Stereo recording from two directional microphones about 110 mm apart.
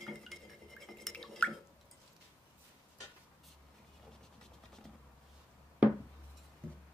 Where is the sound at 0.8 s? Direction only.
5° left (ahead or behind).